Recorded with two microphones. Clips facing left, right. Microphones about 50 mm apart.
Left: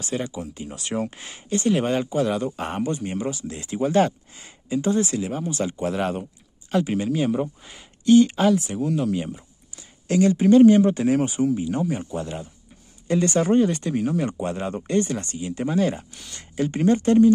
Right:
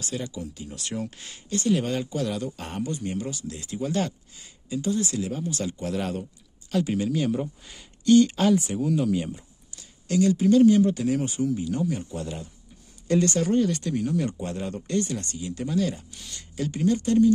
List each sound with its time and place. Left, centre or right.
0.0 s speech: left; by 9.4 s centre
9.8 s speech: left